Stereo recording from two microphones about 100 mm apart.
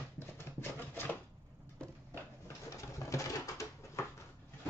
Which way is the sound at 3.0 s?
30° left (ahead or behind).